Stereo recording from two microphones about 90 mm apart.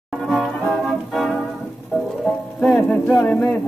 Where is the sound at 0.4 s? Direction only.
Centre (ahead or behind).